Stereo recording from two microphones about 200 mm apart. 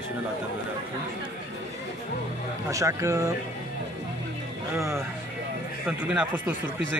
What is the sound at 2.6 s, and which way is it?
Speech, 15° right (ahead or behind).